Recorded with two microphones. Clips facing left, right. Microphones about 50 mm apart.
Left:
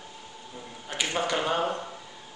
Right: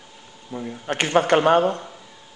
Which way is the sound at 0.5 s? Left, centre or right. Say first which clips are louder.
Right 9 dB; right.